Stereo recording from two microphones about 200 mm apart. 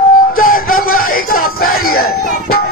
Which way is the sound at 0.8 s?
90° left.